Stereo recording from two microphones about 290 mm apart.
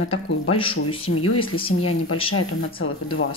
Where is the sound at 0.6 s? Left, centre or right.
Centre.